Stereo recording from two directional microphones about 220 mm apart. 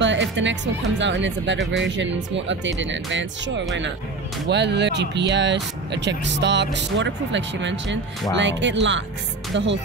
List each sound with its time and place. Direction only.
0.0 s speech: 55° right (ahead or behind)